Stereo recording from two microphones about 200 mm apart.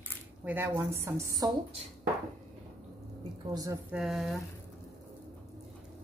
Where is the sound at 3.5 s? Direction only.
20° right (ahead or behind).